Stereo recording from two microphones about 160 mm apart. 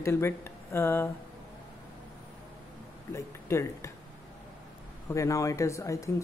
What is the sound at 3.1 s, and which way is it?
Speech, 15° left (ahead or behind).